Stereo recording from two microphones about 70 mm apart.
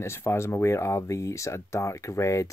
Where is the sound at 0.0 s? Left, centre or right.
Left.